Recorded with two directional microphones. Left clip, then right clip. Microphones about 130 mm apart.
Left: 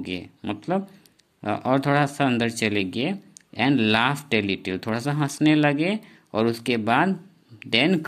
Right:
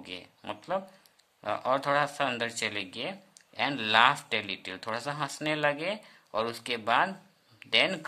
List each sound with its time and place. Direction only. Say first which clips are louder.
0.0 s speech: left 9 dB; 25° left (ahead or behind)